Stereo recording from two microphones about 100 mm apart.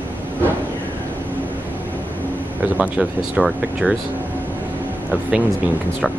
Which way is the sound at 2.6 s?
15° right (ahead or behind).